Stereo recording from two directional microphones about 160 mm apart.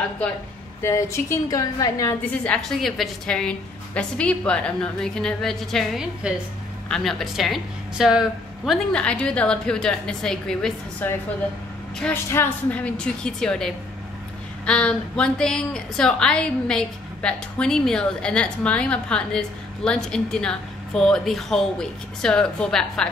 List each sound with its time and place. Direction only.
0.8 s a woman's voice: 20° left (ahead or behind)
2.4 s a woman's voice: 5° left (ahead or behind)